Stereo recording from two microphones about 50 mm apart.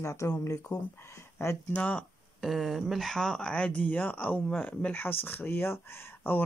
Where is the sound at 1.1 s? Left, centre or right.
Left.